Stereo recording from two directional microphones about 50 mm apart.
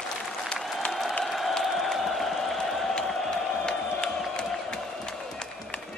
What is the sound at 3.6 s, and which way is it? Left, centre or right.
Crowd, centre.